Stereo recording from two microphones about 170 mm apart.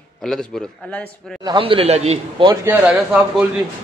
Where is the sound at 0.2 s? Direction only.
5° left (ahead or behind).